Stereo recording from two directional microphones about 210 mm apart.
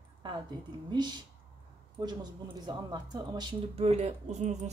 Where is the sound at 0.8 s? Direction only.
20° right (ahead or behind).